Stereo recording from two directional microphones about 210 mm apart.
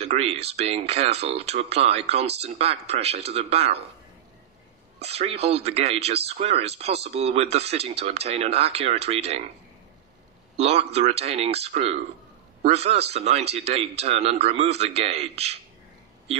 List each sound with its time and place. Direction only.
0.0 s speech: 30° right (ahead or behind)
4.9 s speech: 30° right (ahead or behind)
10.6 s speech: 30° right (ahead or behind)